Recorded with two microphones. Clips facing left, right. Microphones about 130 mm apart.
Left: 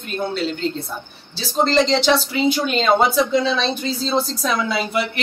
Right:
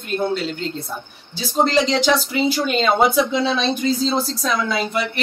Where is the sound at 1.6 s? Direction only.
5° right (ahead or behind).